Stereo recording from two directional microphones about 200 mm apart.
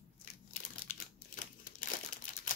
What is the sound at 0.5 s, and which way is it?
Crumpling, 45° left (ahead or behind).